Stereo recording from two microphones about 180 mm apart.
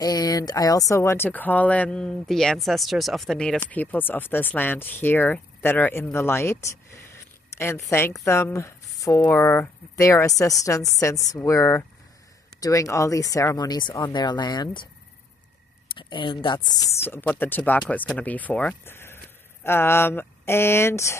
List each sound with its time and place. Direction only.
0.0 s speech: 20° left (ahead or behind)
15.9 s speech: 25° left (ahead or behind)